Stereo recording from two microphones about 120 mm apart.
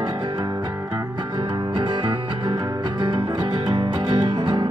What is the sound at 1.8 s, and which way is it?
Music, 40° right (ahead or behind).